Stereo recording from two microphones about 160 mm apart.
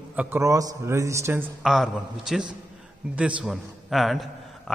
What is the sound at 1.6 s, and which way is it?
A man's voice, centre (ahead or behind).